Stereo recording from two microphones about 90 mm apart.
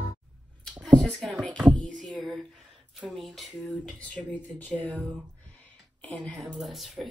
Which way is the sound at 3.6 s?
15° left (ahead or behind).